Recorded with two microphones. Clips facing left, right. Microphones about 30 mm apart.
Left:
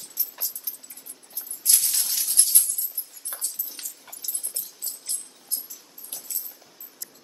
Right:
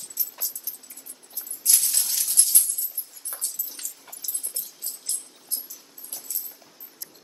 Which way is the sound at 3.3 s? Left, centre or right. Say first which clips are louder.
Left 1 dB; left.